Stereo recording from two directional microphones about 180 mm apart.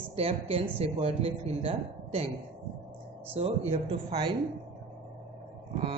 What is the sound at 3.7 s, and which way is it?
Speech, 35° right (ahead or behind).